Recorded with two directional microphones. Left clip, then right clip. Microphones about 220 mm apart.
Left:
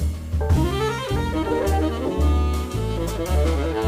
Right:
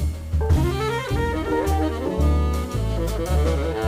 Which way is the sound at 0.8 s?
15° left (ahead or behind).